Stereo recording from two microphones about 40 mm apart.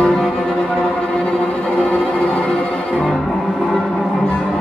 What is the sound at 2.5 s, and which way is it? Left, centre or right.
Music, centre.